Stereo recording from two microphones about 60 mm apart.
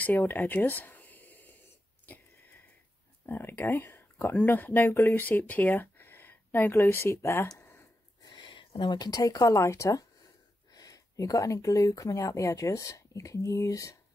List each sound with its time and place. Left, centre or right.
0.0 s a sound: left
2.0 s sniff: left
3.3 s speech: left
7.5 s a sound: left
8.9 s speech: left
9.6 s speech: left
10.7 s speech: left